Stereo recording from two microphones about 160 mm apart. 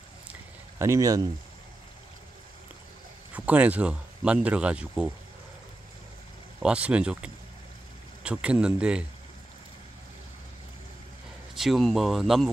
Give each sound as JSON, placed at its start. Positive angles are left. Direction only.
{"t": 0.3, "sound": "a sound", "side_deg": -15}
{"t": 3.3, "sound": "speech", "side_deg": -10}
{"t": 6.6, "sound": "speech", "side_deg": -5}
{"t": 11.5, "sound": "speech", "side_deg": 0}